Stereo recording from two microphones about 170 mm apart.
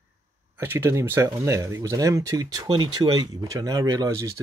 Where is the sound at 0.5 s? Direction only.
15° right (ahead or behind).